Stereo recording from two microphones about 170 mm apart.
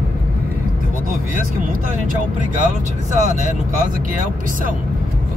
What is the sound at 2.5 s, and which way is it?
Speech, 45° right (ahead or behind).